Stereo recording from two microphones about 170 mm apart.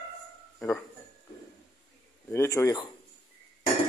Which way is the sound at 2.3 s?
15° left (ahead or behind).